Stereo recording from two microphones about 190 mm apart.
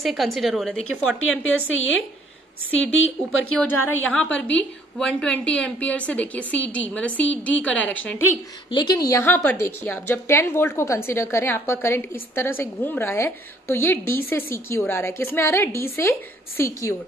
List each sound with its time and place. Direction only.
0.0 s a woman's voice: centre (ahead or behind)
1.4 s a woman's voice: 90° left
3.5 s a woman's voice: 10° left (ahead or behind)
8.6 s a woman's voice: 25° left (ahead or behind)